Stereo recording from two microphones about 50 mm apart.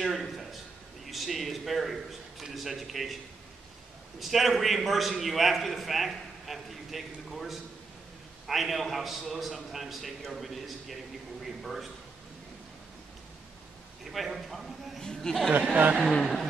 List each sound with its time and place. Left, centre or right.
0.0 s a sound: centre
1.0 s a man's voice: centre
4.2 s a man's voice: centre
14.1 s a man's voice: centre
15.0 s speech: centre
15.7 s speech: right